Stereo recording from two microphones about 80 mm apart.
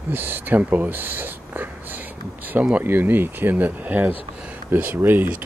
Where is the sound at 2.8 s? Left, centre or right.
Right.